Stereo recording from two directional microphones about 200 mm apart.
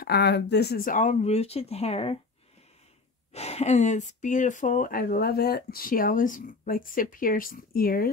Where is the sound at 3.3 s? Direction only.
30° left (ahead or behind).